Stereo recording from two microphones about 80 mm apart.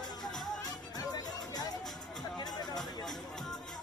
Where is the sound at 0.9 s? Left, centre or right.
Left.